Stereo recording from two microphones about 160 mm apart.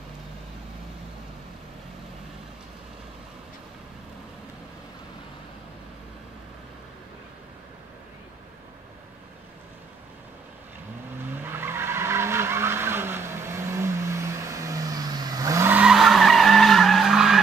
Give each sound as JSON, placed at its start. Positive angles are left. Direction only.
{"t": 11.4, "sound": "vehicle", "side_deg": -15}